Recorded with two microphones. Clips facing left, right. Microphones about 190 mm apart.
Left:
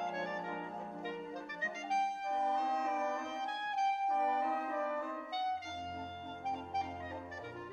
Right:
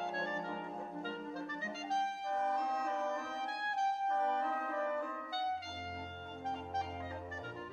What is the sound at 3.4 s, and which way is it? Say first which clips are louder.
Music: left 1 dB; 20° left (ahead or behind).